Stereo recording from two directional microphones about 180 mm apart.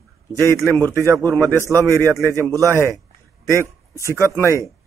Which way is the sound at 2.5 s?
15° right (ahead or behind).